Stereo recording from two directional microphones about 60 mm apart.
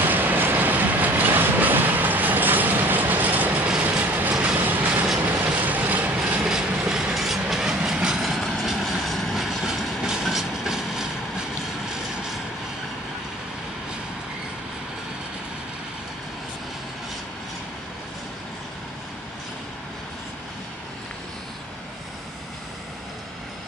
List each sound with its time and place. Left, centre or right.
0.0 s train: right
6.4 s train: centre